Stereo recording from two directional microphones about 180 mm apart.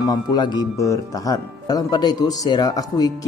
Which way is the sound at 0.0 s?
20° left (ahead or behind).